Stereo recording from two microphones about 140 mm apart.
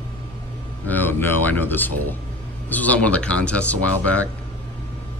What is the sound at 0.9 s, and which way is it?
Speech, 15° left (ahead or behind).